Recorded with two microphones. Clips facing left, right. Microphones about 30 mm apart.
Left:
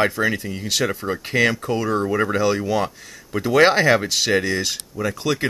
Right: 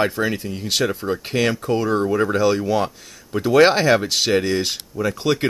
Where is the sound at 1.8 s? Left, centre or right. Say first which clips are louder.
Right 3 dB; centre.